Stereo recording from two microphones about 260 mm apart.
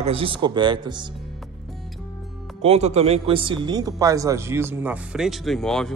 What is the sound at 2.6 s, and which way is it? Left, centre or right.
A man's voice, right.